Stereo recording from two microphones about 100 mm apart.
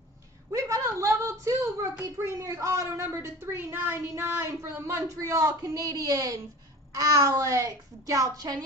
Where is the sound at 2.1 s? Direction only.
30° right (ahead or behind).